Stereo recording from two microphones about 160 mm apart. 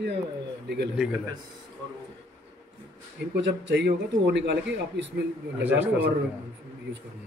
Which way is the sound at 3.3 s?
90° right.